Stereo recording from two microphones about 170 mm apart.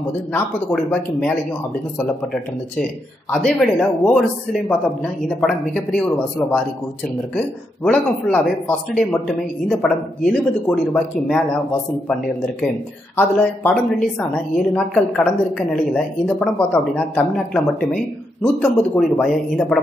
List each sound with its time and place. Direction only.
0.3 s speech: 5° left (ahead or behind)
2.8 s a woman's voice: 5° left (ahead or behind)
13.1 s a woman's voice: 10° left (ahead or behind)